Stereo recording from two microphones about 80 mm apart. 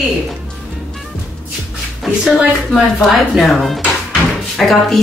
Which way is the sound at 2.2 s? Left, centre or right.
Centre.